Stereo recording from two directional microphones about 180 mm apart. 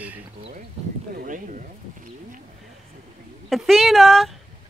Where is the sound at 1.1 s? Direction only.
45° right (ahead or behind).